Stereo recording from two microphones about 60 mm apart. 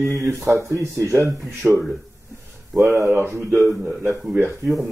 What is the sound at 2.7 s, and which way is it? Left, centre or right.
Speech, centre.